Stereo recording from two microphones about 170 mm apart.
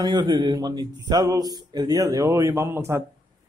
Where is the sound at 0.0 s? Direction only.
25° right (ahead or behind).